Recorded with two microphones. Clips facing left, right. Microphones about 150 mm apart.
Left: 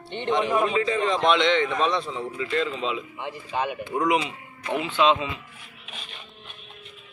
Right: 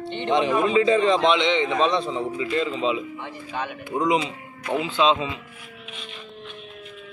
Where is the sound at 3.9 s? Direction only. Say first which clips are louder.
Right 2 dB; 20° right (ahead or behind).